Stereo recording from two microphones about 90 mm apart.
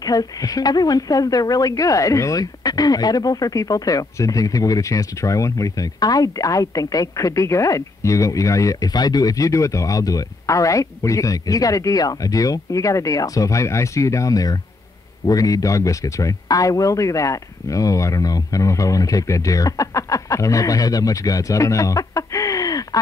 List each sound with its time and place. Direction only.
0.0 s speech: 45° left (ahead or behind)